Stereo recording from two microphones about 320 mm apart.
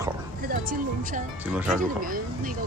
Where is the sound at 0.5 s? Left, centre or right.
Right.